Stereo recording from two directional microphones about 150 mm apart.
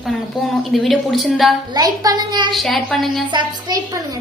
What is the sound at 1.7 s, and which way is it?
Speech, 25° right (ahead or behind).